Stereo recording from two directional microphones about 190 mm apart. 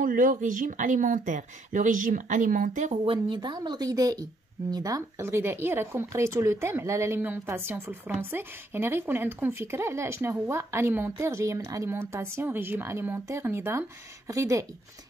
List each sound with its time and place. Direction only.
0.0 s speech: 45° right (ahead or behind)
3.1 s speech: 25° right (ahead or behind)